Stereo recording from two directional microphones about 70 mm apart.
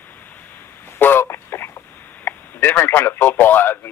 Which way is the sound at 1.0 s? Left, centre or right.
Left.